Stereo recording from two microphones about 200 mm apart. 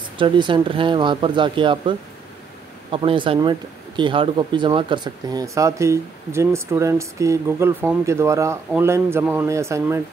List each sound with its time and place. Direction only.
0.2 s speech: 25° right (ahead or behind)